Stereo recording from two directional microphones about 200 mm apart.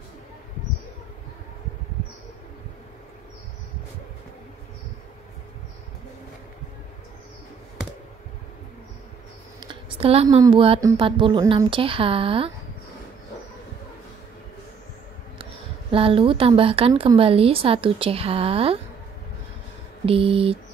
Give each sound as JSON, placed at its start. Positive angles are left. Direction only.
{"t": 9.6, "sound": "a sound", "side_deg": -25}
{"t": 10.4, "sound": "a woman's voice", "side_deg": -25}
{"t": 15.9, "sound": "a woman's voice", "side_deg": -25}
{"t": 20.1, "sound": "a woman's voice", "side_deg": -30}